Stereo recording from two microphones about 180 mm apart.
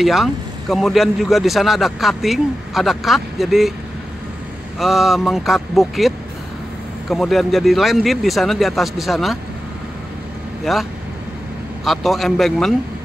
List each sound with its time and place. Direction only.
0.0 s speech: centre (ahead or behind)
4.7 s speech: centre (ahead or behind)
10.6 s speech: centre (ahead or behind)